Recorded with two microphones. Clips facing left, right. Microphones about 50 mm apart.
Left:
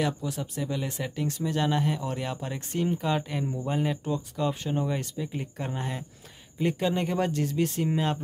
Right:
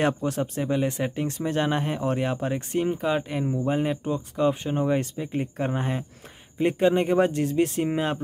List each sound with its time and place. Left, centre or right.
0.0 s speech: right